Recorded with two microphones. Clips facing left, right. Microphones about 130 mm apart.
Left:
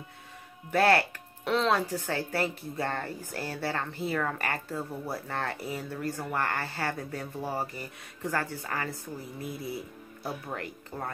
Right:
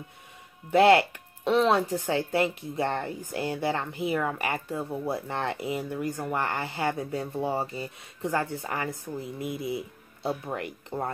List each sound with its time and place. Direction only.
0.7 s speech: 20° right (ahead or behind)